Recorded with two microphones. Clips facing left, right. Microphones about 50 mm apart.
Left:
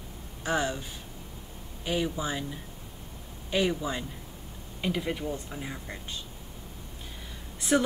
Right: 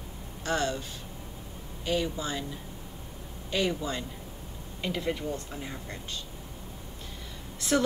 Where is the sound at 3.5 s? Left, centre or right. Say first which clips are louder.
Left 2 dB; centre.